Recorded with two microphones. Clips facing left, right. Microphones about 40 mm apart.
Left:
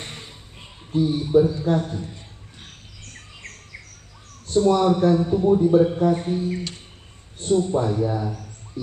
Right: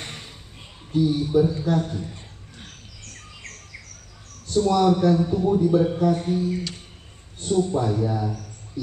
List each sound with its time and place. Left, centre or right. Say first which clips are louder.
0.0 s a sound: even; centre
0.9 s a man's voice: left 2 dB; centre
4.5 s a man's voice: left 1 dB; left